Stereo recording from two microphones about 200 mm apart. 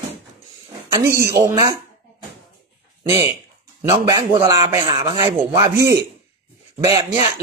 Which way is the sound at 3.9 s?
20° right (ahead or behind).